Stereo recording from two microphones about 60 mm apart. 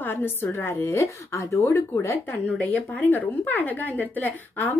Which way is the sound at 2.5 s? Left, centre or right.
Left.